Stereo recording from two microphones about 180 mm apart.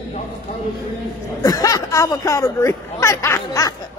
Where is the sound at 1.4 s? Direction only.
20° left (ahead or behind).